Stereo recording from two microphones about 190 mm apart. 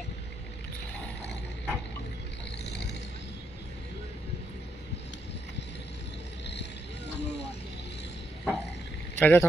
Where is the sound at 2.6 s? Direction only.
65° left (ahead or behind).